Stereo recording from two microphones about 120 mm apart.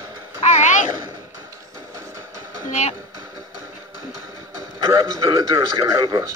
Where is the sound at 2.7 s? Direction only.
70° left (ahead or behind).